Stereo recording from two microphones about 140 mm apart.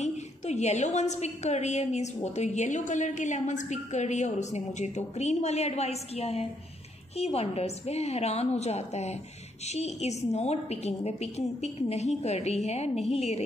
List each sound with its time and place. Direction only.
0.0 s a woman's voice: 55° left (ahead or behind)